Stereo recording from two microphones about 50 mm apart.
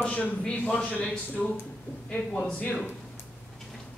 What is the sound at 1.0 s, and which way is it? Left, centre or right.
Speech, centre.